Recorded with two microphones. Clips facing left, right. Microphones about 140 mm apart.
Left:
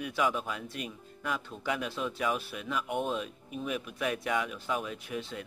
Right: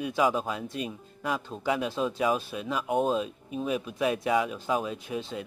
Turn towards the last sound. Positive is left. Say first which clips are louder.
# right 4 dB
turn(degrees=-25)  # may be behind; listen again after turning